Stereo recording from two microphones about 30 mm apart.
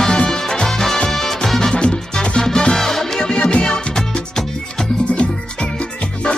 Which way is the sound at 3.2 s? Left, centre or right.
Left.